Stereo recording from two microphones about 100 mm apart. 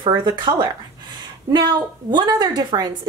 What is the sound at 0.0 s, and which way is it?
Speech, 55° right (ahead or behind).